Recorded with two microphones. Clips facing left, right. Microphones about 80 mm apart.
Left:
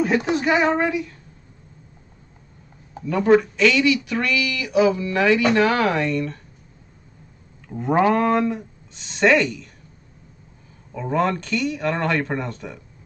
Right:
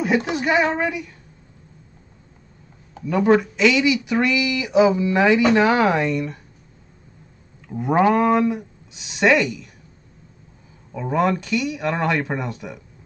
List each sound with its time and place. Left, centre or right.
0.0 s speech: centre
0.8 s speech: centre
3.1 s speech: centre
7.6 s speech: centre
10.9 s speech: centre